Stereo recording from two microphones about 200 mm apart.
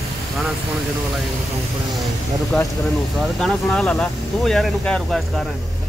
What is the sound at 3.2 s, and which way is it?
Speech, 5° left (ahead or behind).